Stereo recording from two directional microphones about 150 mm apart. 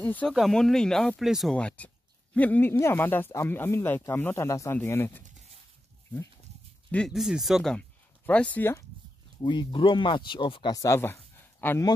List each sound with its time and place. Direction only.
0.0 s speech: 10° left (ahead or behind)
6.9 s speech: 5° left (ahead or behind)
9.4 s speech: 30° left (ahead or behind); by 11.8 s 15° left (ahead or behind)